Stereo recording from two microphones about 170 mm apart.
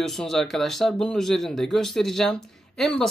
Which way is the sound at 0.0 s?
Centre (ahead or behind).